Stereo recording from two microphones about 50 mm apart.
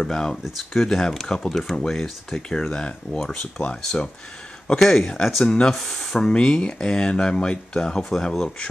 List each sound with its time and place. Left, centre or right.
0.0 s speech: centre
3.2 s speech: centre
3.6 s speech: centre
4.7 s speech: centre
6.1 s speech: centre